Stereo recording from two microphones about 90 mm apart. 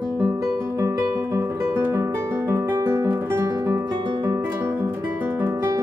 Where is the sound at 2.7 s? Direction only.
30° right (ahead or behind).